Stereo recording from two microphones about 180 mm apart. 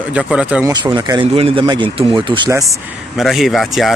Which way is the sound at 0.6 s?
20° right (ahead or behind).